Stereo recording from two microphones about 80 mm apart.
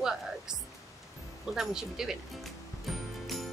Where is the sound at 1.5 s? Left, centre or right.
Centre.